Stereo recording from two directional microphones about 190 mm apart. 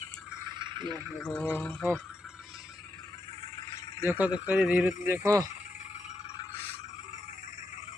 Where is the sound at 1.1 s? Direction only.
5° left (ahead or behind).